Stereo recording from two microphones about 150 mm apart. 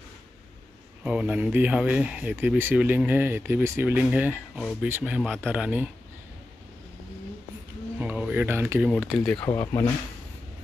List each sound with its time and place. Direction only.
1.0 s speech: 10° right (ahead or behind)
8.0 s a sound: 10° right (ahead or behind)
9.0 s speech: 5° left (ahead or behind)
9.5 s speech: 15° left (ahead or behind)